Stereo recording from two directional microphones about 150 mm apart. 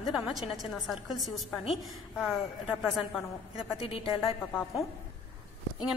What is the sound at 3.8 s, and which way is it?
Speech, 35° left (ahead or behind).